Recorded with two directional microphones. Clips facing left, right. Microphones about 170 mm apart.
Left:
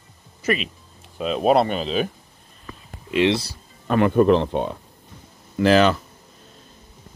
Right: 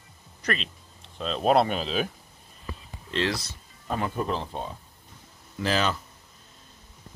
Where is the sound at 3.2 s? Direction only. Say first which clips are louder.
Left 12 dB; 30° left (ahead or behind).